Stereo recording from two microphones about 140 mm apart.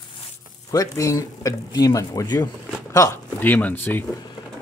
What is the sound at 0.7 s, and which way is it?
Speech, 25° left (ahead or behind).